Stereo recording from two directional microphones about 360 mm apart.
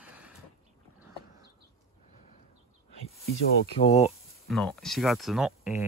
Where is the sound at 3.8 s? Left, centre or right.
Centre.